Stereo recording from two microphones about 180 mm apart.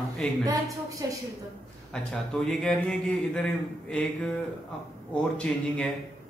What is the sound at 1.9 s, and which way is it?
A man's voice, 5° left (ahead or behind).